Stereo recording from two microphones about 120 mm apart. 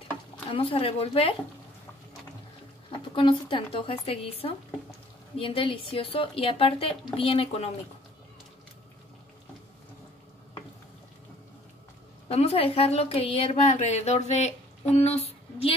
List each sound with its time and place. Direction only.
0.5 s speech: 50° left (ahead or behind)
3.2 s speech: 45° left (ahead or behind)
12.3 s a woman's voice: 60° left (ahead or behind)